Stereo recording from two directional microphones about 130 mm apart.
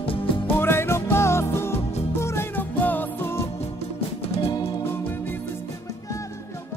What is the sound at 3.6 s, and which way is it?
Music, 50° left (ahead or behind).